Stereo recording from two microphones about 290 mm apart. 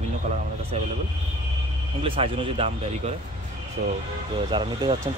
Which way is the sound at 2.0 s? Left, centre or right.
Centre.